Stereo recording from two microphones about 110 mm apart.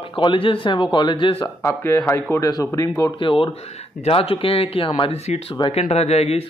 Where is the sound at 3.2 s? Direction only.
50° left (ahead or behind).